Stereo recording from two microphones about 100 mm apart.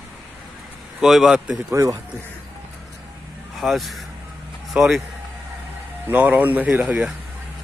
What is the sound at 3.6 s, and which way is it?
A man's voice, centre (ahead or behind).